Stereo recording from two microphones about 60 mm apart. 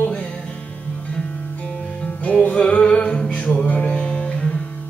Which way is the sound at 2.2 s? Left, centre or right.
Left.